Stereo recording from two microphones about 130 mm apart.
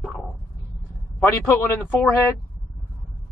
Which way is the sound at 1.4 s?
20° left (ahead or behind).